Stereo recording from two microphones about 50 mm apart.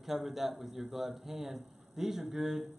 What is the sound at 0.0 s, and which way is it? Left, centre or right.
Speech, centre.